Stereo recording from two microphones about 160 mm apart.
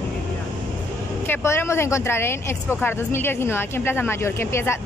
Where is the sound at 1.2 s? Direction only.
15° left (ahead or behind).